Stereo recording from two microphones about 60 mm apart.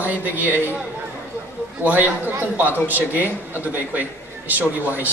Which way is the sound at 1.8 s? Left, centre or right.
Right.